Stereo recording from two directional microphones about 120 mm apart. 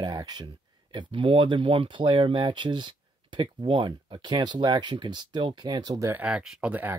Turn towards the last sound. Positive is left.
turn(degrees=-15)  # may be behind; listen again after turning